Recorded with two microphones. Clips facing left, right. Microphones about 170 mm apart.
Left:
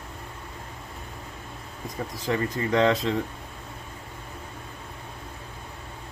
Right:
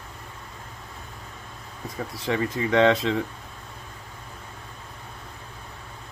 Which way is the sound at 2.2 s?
20° right (ahead or behind).